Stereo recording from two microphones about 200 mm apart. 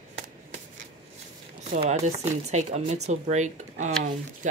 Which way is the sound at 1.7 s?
35° right (ahead or behind).